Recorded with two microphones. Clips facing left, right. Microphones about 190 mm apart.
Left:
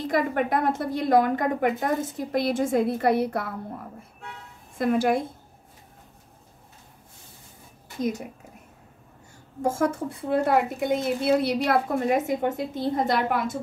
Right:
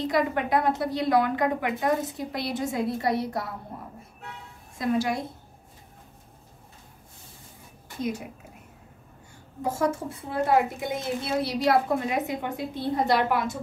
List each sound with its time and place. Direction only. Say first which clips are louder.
0.0 s a woman's voice: left 1 dB; 55° left (ahead or behind)
4.7 s a woman's voice: left 4 dB; 55° left (ahead or behind)
9.6 s a woman's voice: left 2 dB; 55° left (ahead or behind)